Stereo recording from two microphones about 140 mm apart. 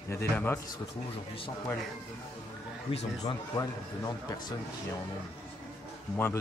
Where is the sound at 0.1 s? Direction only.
15° left (ahead or behind).